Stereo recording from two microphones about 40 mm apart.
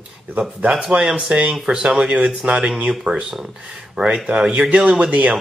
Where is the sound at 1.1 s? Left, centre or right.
Right.